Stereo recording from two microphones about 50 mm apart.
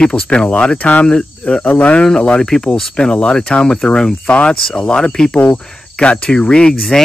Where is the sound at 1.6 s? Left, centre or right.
Left.